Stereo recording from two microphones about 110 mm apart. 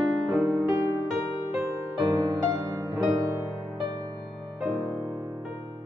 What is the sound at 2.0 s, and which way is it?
Music, 30° right (ahead or behind).